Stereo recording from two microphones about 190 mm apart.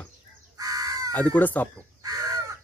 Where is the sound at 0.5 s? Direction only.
20° right (ahead or behind).